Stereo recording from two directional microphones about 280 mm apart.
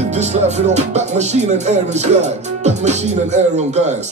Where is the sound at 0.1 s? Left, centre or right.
Right.